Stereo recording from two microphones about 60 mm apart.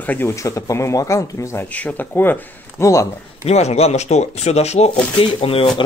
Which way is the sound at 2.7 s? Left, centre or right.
Left.